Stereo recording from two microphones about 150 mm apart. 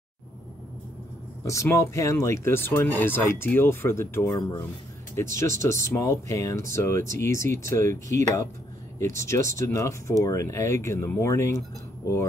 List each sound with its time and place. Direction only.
1.4 s speech: 20° left (ahead or behind)